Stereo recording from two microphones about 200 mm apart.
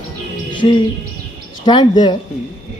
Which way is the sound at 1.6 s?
20° left (ahead or behind).